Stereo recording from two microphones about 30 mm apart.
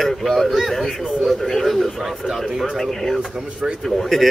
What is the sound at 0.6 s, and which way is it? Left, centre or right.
Speech, centre.